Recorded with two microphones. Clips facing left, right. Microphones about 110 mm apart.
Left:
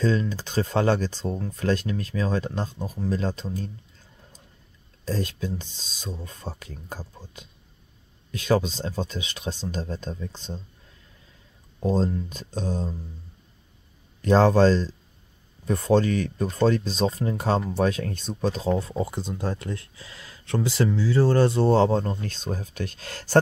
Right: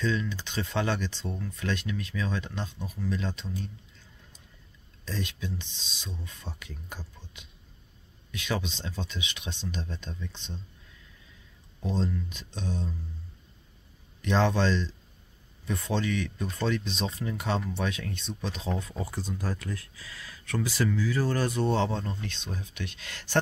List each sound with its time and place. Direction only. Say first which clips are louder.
0.0 s speech: left 6 dB; 40° left (ahead or behind)
5.0 s speech: left 7 dB; 40° left (ahead or behind)
11.8 s speech: left 7 dB; 40° left (ahead or behind)
14.2 s speech: left 8 dB; 40° left (ahead or behind)